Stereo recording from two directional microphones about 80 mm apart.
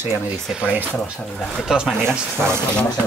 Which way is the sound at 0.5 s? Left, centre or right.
Centre.